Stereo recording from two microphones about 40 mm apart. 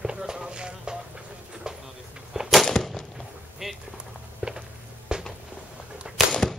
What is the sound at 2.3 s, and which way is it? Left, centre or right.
Gunshot, centre.